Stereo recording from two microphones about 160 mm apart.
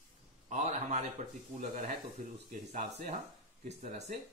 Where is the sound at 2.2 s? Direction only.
60° right (ahead or behind).